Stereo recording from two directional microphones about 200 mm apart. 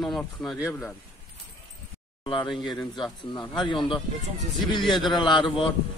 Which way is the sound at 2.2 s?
25° left (ahead or behind).